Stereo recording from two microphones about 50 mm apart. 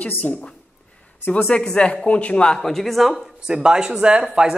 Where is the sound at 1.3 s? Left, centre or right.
Centre.